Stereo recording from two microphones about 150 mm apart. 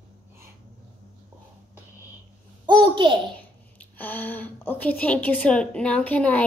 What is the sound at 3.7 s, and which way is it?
A woman's voice, 10° left (ahead or behind).